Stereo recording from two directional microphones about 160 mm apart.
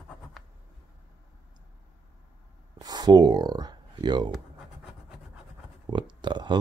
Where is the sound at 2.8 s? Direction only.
25° right (ahead or behind).